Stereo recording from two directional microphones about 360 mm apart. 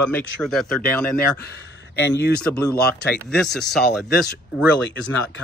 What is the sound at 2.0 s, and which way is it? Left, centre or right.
Speech, left.